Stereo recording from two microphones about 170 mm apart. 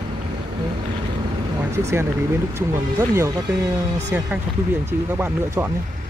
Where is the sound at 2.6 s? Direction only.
15° right (ahead or behind).